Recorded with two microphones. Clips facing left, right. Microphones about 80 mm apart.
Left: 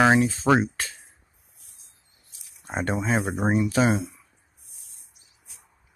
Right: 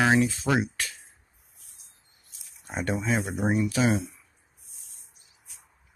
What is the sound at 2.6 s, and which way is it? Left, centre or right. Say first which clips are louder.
Speech: left 2 dB; left.